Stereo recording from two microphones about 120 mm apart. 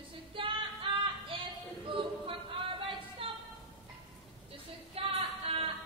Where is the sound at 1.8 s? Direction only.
45° right (ahead or behind).